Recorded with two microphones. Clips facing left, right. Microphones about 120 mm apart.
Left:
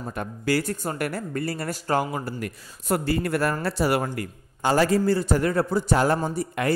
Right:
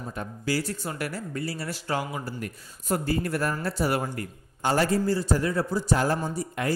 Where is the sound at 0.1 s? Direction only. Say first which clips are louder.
Left 4 dB; 60° left (ahead or behind).